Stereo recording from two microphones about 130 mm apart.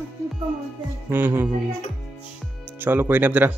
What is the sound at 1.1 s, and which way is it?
Speech, 15° right (ahead or behind).